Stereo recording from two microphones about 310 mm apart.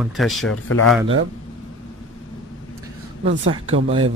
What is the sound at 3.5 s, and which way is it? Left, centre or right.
Speech, centre.